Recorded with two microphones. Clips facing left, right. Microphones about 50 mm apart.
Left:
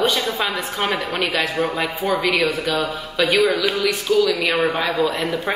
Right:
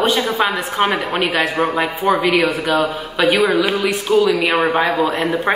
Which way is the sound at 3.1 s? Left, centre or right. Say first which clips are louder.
Right 3 dB; right.